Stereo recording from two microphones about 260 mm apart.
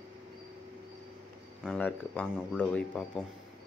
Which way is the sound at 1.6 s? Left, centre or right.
Centre.